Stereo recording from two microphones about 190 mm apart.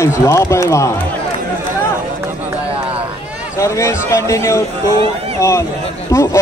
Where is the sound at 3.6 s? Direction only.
15° left (ahead or behind).